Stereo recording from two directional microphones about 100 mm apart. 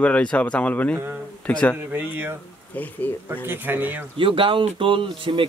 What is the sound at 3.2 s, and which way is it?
Speech, 20° right (ahead or behind).